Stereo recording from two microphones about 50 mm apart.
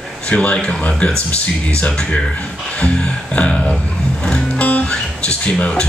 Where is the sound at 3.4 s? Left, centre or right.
Left.